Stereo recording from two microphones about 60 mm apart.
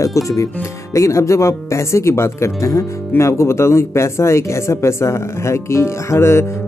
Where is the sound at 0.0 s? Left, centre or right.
Left.